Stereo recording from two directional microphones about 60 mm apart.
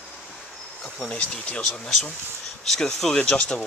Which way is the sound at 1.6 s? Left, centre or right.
Centre.